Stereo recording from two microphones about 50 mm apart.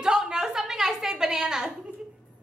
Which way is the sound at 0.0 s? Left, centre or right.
Centre.